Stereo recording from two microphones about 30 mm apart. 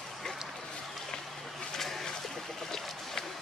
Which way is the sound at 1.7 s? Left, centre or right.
Centre.